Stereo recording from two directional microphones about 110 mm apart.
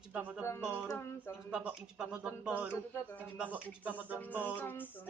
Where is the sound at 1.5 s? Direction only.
10° right (ahead or behind).